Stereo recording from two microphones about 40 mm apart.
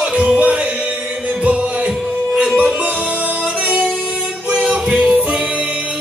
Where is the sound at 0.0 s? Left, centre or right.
Right.